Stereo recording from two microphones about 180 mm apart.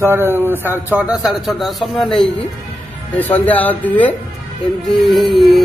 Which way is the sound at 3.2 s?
10° left (ahead or behind).